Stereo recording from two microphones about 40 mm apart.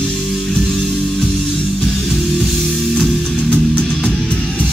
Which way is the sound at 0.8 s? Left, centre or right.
Centre.